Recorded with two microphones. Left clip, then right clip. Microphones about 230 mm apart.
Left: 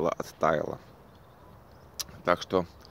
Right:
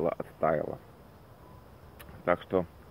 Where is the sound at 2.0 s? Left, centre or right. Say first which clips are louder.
Left 2 dB; left.